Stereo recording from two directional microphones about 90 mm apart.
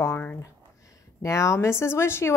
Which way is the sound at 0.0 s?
25° left (ahead or behind).